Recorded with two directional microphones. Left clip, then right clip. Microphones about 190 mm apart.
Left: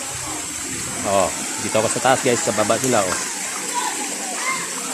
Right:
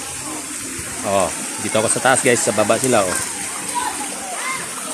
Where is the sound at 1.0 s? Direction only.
10° right (ahead or behind).